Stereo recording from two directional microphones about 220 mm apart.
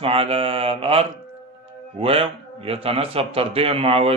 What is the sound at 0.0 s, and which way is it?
Speech, 25° right (ahead or behind).